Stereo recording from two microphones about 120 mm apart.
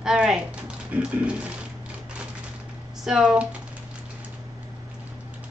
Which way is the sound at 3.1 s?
5° right (ahead or behind).